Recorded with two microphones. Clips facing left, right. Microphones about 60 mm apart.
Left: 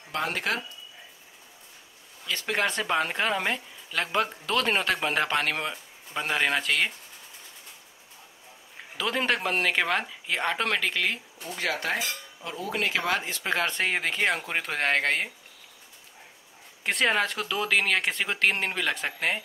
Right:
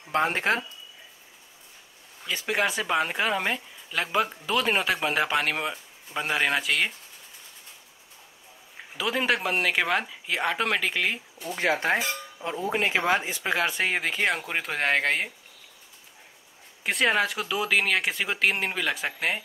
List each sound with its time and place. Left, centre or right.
0.1 s speech: right
2.2 s speech: centre
8.9 s speech: centre
11.5 s speech: right
13.5 s speech: centre
16.8 s speech: centre